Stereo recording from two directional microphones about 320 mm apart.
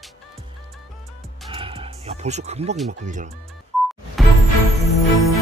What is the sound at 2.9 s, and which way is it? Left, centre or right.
Speech, right.